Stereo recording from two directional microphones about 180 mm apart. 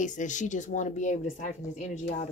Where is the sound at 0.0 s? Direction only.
45° left (ahead or behind).